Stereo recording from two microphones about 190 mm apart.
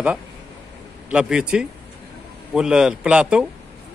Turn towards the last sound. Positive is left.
turn(degrees=-5)  # may be behind; listen again after turning